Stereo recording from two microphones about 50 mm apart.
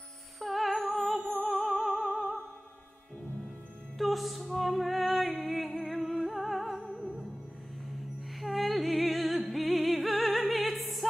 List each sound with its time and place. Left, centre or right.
0.4 s music: centre
4.0 s music: centre
6.8 s music: right
8.4 s music: centre